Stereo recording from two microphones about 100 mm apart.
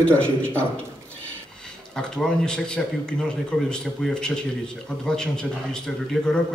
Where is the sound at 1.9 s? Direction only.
10° left (ahead or behind).